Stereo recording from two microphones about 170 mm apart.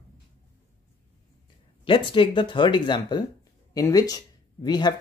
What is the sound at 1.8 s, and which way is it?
Speech, 30° left (ahead or behind).